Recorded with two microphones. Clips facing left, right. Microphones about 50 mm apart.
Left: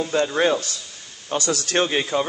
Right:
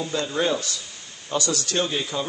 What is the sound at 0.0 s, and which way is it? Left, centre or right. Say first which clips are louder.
A man's voice: left 5 dB; left.